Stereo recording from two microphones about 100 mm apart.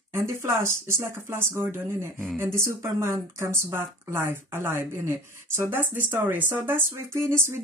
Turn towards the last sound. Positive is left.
turn(degrees=-25)  # may be behind; listen again after turning